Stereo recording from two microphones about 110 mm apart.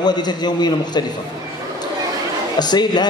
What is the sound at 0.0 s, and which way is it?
A man's voice, 40° left (ahead or behind).